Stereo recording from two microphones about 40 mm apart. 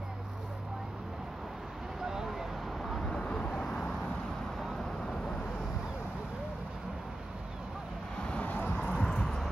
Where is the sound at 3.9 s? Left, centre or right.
Centre.